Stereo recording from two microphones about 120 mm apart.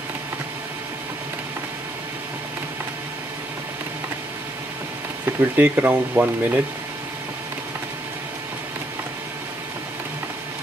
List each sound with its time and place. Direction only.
5.2 s speech: 15° right (ahead or behind)